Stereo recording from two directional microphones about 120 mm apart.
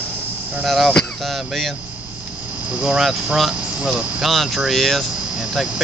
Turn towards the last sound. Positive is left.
turn(degrees=-5)  # may be behind; listen again after turning